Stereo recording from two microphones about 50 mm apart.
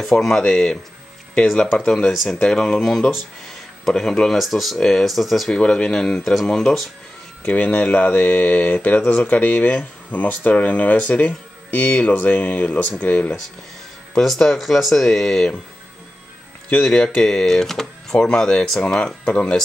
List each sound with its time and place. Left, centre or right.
0.0 s speech: centre
2.5 s speech: centre
3.8 s speech: centre
4.4 s speech: centre
4.7 s speech: centre
5.0 s speech: centre
5.5 s speech: centre
7.4 s speech: left
10.1 s speech: left
14.2 s speech: centre
16.6 s speech: centre